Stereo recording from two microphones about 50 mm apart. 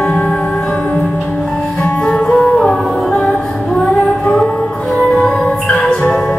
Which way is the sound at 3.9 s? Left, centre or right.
Left.